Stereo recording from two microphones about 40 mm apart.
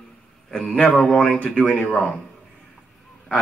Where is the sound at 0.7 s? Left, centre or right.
Left.